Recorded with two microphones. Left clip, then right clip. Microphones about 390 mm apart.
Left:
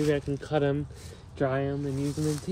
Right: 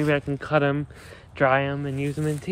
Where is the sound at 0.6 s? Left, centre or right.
Right.